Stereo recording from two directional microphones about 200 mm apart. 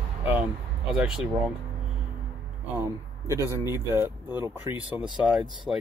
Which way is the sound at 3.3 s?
15° right (ahead or behind).